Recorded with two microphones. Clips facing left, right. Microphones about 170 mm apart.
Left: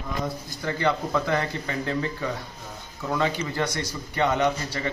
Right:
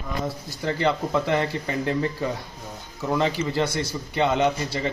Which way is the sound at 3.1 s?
20° right (ahead or behind).